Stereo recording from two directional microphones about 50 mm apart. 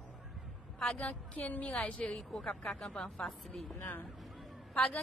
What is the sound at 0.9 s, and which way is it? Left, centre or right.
Speech, left.